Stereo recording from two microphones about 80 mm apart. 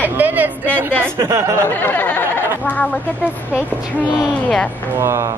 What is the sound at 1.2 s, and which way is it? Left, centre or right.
Speech, right.